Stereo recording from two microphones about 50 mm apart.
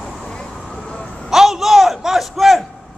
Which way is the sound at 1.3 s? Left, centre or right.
Centre.